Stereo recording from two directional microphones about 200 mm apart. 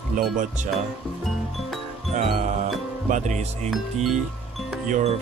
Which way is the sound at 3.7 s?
Centre (ahead or behind).